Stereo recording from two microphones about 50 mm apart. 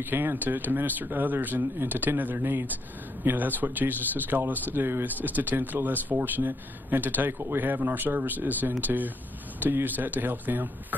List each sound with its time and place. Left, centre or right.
0.0 s speech: right